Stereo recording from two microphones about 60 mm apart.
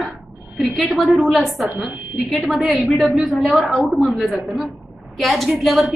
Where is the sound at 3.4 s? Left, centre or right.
Right.